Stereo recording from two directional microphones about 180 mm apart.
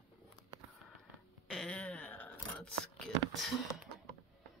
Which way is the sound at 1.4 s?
5° left (ahead or behind).